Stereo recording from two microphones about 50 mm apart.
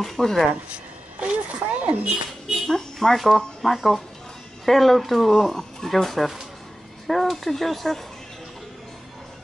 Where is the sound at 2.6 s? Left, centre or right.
Centre.